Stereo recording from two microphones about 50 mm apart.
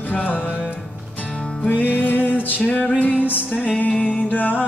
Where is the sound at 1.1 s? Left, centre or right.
Left.